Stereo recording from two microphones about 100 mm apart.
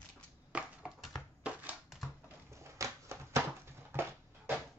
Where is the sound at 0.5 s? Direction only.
10° right (ahead or behind).